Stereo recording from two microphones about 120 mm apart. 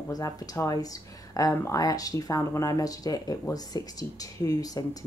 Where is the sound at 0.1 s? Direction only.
30° left (ahead or behind).